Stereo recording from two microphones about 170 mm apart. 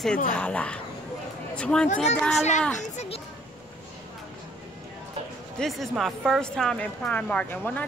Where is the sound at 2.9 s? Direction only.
35° left (ahead or behind).